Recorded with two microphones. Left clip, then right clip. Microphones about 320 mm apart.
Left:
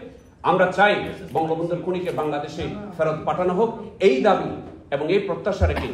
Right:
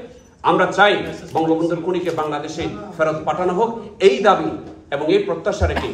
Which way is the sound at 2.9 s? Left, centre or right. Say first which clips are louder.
Right 3 dB; right.